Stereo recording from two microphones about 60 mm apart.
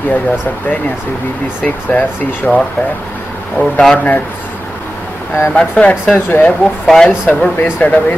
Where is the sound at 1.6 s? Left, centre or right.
Left.